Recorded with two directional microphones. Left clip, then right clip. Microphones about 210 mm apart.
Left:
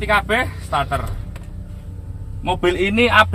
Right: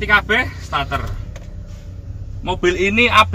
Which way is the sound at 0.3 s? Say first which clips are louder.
Right 1 dB; 5° right (ahead or behind).